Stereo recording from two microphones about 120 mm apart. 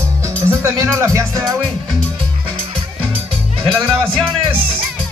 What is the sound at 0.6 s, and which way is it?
Music, 25° right (ahead or behind).